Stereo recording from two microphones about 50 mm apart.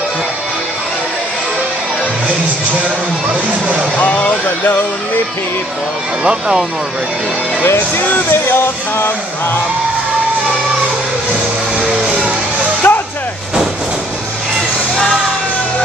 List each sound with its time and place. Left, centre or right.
4.0 s speech: left
8.3 s speech: left
12.8 s music: left